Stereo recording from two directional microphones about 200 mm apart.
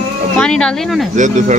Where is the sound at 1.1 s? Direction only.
40° right (ahead or behind).